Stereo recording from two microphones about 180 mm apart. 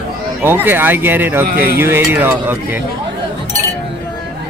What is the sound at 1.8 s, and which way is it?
A man's voice, 10° right (ahead or behind).